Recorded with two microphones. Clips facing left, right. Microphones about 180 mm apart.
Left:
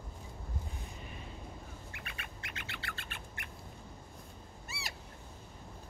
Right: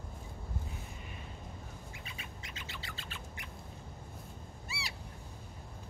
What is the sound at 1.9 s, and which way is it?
Squawk, 65° left (ahead or behind).